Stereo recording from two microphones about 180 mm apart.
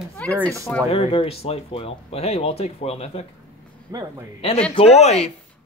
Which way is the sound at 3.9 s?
20° right (ahead or behind).